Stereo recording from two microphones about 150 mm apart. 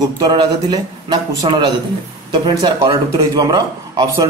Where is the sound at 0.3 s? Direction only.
30° right (ahead or behind).